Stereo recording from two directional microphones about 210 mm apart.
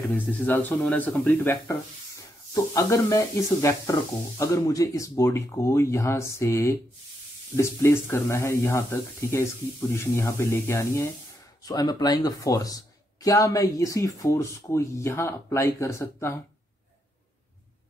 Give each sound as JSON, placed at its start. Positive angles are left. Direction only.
{"t": 0.1, "sound": "speech", "side_deg": 5}